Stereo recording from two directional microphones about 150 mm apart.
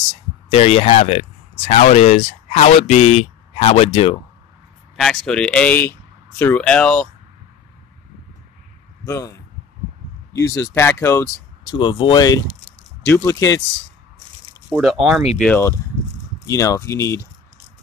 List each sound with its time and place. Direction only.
0.5 s speech: 40° left (ahead or behind)
4.9 s speech: 5° left (ahead or behind)
9.0 s speech: 20° left (ahead or behind)
11.7 s speech: 35° left (ahead or behind)
14.7 s speech: centre (ahead or behind)
15.4 s speech: 10° left (ahead or behind)